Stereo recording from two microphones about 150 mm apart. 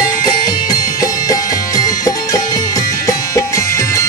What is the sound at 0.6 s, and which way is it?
Music, 25° left (ahead or behind).